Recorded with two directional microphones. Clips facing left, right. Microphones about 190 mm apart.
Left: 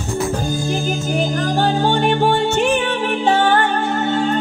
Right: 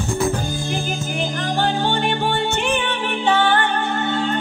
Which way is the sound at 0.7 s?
40° left (ahead or behind).